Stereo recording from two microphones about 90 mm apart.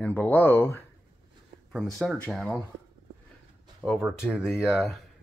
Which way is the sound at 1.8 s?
Centre (ahead or behind).